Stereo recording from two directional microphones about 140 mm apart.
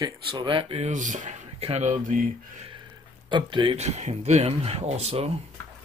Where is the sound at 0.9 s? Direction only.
65° right (ahead or behind).